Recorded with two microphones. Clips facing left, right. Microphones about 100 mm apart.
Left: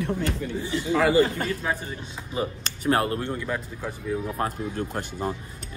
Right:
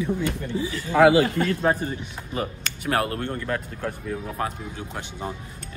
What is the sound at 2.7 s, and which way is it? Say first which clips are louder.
Speech: left 2 dB; 25° left (ahead or behind).